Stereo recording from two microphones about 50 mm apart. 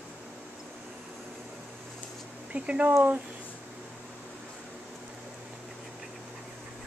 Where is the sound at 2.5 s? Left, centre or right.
Right.